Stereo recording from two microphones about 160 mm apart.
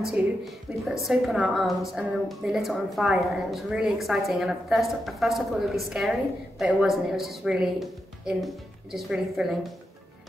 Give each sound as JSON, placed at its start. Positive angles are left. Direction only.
{"t": 0.8, "sound": "a woman's voice", "side_deg": 0}